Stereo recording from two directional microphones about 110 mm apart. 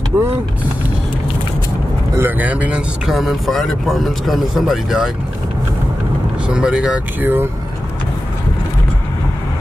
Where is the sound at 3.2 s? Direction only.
Centre (ahead or behind).